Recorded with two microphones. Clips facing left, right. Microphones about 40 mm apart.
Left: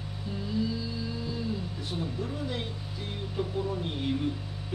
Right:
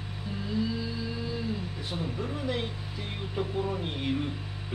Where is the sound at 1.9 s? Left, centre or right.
Right.